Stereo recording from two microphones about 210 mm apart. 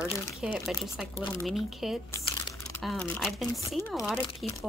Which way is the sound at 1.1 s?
20° left (ahead or behind).